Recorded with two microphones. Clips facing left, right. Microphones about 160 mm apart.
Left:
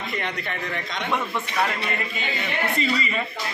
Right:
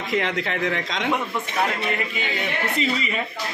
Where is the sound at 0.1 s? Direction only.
90° right.